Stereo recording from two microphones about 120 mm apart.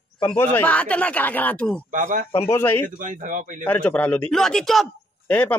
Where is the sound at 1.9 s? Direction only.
90° right.